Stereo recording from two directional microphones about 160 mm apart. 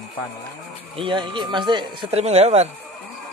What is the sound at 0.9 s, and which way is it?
Speech, 30° right (ahead or behind).